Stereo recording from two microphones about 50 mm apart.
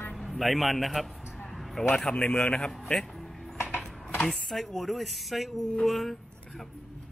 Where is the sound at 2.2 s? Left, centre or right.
Left.